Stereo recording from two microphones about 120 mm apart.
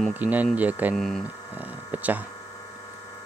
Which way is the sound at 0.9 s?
5° left (ahead or behind).